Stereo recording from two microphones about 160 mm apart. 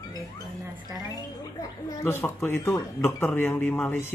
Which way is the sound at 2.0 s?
15° left (ahead or behind).